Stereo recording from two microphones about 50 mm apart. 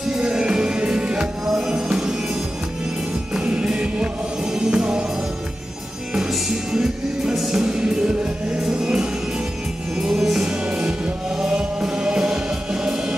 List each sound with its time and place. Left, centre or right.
0.1 s music: centre
3.3 s music: centre
6.7 s music: centre